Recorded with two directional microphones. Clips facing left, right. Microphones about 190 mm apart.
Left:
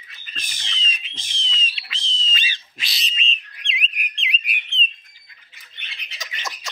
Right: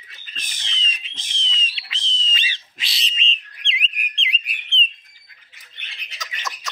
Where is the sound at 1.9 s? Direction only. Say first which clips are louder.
Right 3 dB; 10° left (ahead or behind).